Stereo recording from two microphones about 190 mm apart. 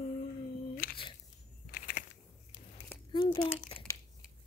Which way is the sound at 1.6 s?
50° left (ahead or behind).